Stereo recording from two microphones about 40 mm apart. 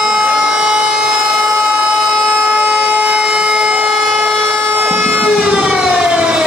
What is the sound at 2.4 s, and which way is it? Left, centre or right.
Siren, right.